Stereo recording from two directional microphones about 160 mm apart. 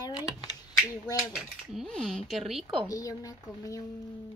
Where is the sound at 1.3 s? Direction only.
5° right (ahead or behind).